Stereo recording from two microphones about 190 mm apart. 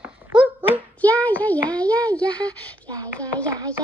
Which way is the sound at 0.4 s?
10° right (ahead or behind).